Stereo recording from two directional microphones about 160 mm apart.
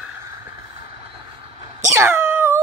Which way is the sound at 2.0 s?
15° right (ahead or behind).